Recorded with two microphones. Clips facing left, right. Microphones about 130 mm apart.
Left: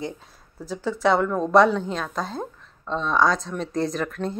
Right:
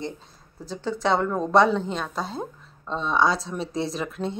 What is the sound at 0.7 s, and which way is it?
Speech, centre (ahead or behind).